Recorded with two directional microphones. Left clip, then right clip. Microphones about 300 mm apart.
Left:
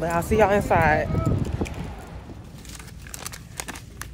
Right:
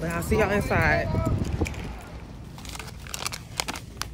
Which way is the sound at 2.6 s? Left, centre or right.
Centre.